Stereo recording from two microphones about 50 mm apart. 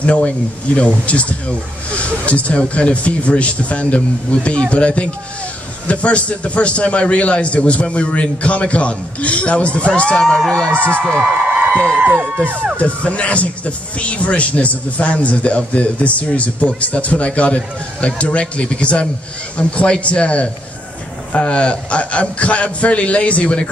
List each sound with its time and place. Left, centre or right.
0.0 s speech: left
10.2 s speech: centre
10.7 s a man's voice: right
11.1 s a sound: right
12.0 s speech: right
12.7 s speech: left